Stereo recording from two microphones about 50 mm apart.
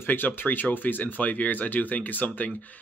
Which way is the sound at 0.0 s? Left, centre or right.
Left.